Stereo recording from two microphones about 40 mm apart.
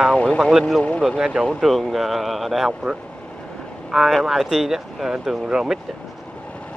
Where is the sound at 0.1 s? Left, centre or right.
Left.